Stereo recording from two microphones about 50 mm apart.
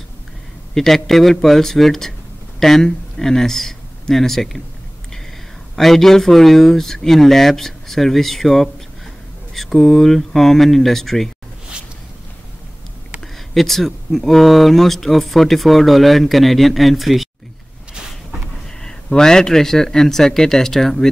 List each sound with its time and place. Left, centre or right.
0.7 s speech: centre
5.8 s speech: centre
13.6 s speech: centre
18.8 s speech: centre